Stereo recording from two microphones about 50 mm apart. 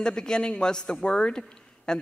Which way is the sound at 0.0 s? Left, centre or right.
Centre.